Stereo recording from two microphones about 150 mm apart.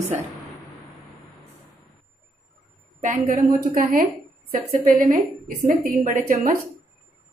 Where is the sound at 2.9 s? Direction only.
60° right (ahead or behind).